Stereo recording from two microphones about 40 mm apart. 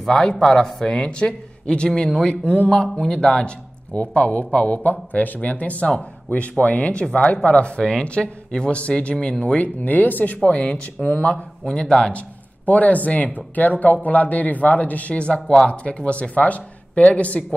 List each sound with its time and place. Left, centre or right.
0.1 s speech: left
0.9 s speech: left
3.1 s speech: centre
4.1 s speech: left
8.7 s speech: left
10.4 s speech: left
11.6 s speech: centre
12.1 s speech: left